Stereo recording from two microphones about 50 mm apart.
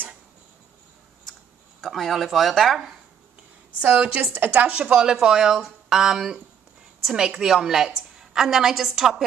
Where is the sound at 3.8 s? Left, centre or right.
Right.